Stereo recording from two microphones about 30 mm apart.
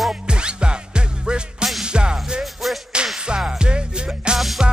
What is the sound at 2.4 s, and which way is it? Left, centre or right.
Music, centre.